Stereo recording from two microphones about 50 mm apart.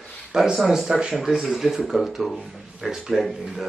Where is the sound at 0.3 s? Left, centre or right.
Centre.